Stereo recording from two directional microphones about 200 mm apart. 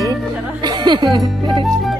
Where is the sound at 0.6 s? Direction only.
20° right (ahead or behind).